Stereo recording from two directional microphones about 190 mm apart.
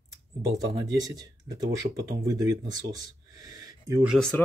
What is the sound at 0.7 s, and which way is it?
Speech, 20° right (ahead or behind).